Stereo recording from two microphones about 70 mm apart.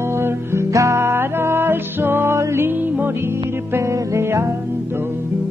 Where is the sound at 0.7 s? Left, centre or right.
Right.